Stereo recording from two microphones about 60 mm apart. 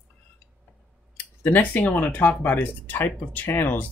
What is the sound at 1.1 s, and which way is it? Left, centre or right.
Speech, left.